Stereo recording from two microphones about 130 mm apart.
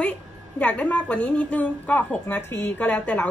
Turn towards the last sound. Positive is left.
turn(degrees=10)  # may be behind; listen again after turning